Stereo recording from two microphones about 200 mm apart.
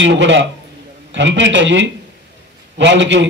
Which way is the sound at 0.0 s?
65° right (ahead or behind).